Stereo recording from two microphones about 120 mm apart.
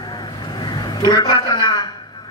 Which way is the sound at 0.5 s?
40° left (ahead or behind).